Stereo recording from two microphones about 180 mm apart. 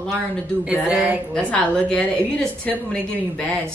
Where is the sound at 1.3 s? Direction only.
5° left (ahead or behind).